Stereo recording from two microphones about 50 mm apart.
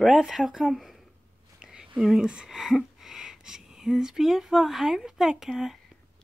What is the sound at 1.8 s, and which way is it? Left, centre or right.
Speech, centre.